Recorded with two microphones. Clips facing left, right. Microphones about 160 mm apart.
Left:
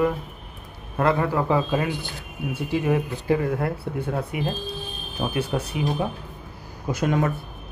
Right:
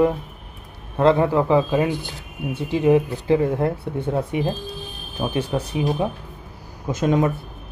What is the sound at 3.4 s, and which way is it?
Speech, 25° right (ahead or behind).